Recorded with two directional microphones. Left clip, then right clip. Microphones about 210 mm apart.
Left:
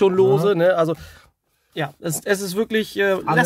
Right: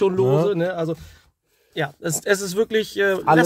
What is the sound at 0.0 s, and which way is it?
Speech, 25° left (ahead or behind).